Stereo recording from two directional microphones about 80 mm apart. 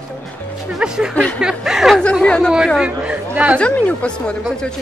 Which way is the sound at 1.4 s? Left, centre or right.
Centre.